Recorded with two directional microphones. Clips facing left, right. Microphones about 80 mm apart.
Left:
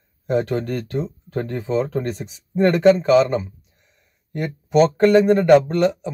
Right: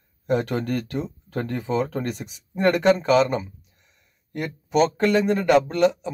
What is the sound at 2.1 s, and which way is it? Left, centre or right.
Speech, left.